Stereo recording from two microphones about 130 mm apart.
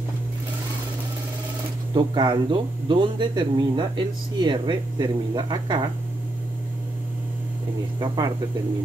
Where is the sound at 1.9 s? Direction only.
35° right (ahead or behind).